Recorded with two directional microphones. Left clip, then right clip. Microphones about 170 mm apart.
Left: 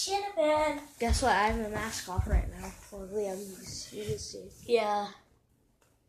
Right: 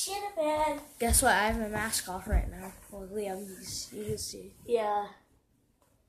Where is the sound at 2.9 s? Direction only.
10° right (ahead or behind).